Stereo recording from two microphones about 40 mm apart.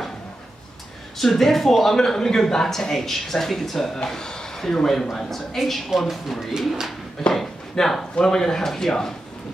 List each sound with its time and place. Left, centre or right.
1.1 s speech: centre
7.7 s speech: centre